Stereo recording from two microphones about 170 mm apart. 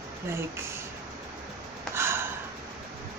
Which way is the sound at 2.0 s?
15° right (ahead or behind).